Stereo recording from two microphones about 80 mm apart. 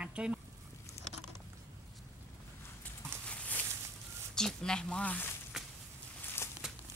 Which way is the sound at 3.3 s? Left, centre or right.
Centre.